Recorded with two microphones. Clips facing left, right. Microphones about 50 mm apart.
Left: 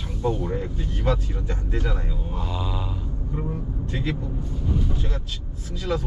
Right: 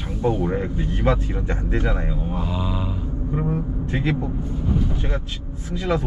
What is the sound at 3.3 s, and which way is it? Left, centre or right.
Speech, right.